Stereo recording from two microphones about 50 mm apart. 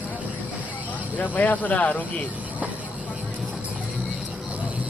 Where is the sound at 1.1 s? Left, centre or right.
Left.